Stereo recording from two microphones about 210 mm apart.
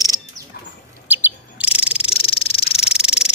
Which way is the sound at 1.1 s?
10° right (ahead or behind).